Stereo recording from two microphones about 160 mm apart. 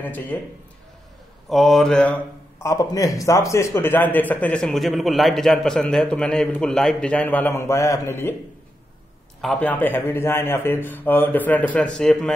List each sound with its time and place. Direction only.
0.0 s a man's voice: 10° left (ahead or behind)
1.5 s speech: centre (ahead or behind)
2.6 s a man's voice: 20° left (ahead or behind)
9.4 s a man's voice: 5° left (ahead or behind)